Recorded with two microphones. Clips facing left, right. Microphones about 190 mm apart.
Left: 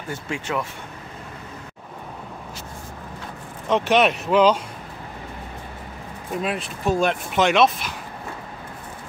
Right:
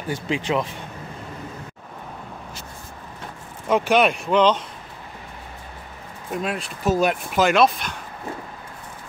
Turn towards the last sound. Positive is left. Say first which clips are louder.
# even
turn(degrees=0)  # may be behind; listen again after turning